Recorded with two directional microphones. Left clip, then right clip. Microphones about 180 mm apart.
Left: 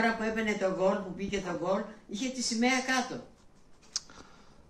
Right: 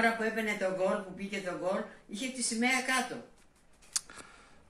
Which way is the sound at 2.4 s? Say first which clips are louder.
Left 1 dB; 80° right.